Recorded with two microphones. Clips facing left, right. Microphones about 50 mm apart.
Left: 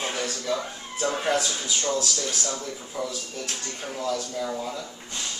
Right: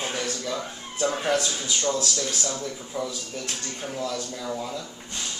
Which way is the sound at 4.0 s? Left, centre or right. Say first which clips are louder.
Left 4 dB; left.